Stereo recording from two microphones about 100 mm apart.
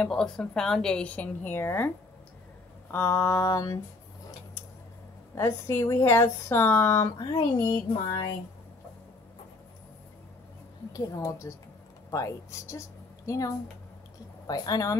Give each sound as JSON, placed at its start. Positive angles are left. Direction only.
{"t": 0.0, "sound": "a woman's voice", "side_deg": 10}
{"t": 2.9, "sound": "speech", "side_deg": 25}
{"t": 5.3, "sound": "speech", "side_deg": 25}
{"t": 7.2, "sound": "speech", "side_deg": 45}
{"t": 10.9, "sound": "a woman's voice", "side_deg": 35}
{"t": 14.5, "sound": "a woman's voice", "side_deg": 40}